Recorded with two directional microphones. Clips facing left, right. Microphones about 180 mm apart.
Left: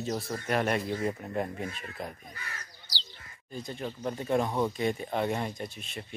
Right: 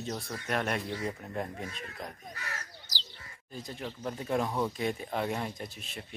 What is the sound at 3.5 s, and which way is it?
Speech, centre (ahead or behind).